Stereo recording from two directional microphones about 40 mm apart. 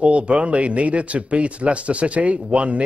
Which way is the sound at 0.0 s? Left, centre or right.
Right.